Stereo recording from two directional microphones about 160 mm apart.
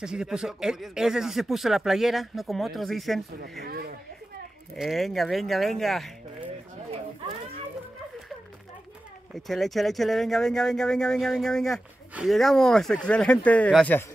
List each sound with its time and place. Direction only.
0.0 s speech: 5° right (ahead or behind)
3.6 s speech: 70° right (ahead or behind)
4.7 s speech: centre (ahead or behind)
9.3 s speech: centre (ahead or behind)